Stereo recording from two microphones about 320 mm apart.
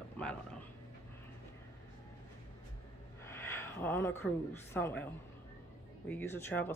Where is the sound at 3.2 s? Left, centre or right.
Centre.